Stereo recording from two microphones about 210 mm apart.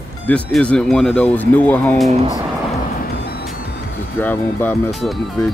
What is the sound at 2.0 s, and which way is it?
Speech, 30° right (ahead or behind).